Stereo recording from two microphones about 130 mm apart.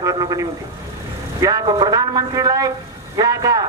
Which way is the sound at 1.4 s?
30° right (ahead or behind).